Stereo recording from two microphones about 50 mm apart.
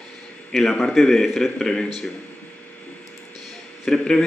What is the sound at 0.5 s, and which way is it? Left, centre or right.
A man's voice, centre.